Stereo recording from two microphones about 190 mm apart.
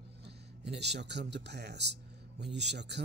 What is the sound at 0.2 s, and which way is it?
Speech, 60° right (ahead or behind).